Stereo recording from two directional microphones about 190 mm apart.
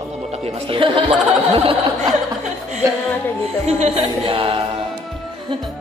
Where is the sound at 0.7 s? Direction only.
25° right (ahead or behind).